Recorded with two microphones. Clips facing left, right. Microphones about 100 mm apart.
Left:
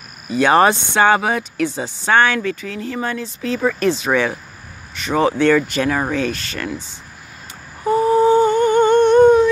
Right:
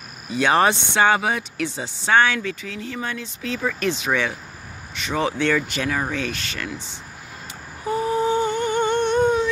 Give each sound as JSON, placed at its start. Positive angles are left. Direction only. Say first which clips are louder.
{"t": 0.4, "sound": "speech", "louder": "left 5 dB", "side_deg": 45}
{"t": 7.9, "sound": "humming", "louder": "left 8 dB", "side_deg": 40}